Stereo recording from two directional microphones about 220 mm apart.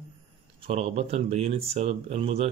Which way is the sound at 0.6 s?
25° right (ahead or behind).